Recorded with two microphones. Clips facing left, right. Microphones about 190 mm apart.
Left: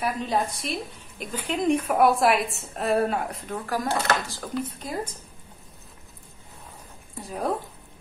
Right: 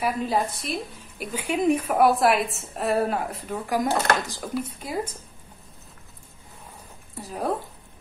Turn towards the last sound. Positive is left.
turn(degrees=0)  # may be behind; listen again after turning